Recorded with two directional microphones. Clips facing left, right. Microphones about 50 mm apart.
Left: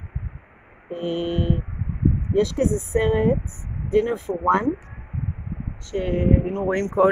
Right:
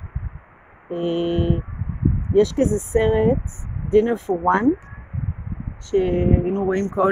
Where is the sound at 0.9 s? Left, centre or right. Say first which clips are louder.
Right 4 dB; right.